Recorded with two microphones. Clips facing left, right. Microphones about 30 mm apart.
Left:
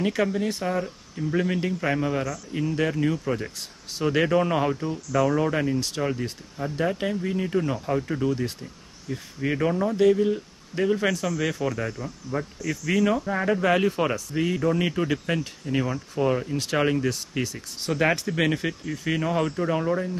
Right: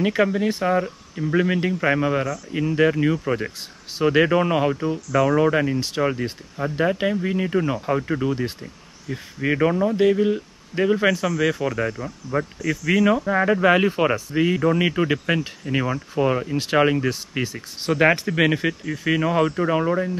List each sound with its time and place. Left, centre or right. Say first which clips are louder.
0.0 s speech: right 4 dB; right